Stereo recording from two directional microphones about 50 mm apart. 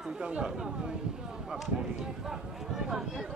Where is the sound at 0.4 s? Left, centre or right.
Centre.